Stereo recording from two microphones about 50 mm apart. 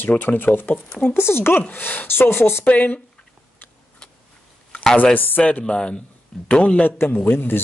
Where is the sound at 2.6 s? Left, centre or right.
Left.